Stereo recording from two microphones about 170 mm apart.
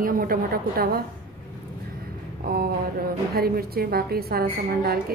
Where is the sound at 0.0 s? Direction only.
55° right (ahead or behind).